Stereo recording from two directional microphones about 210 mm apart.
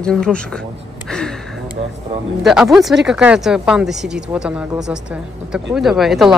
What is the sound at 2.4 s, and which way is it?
Speech, centre (ahead or behind).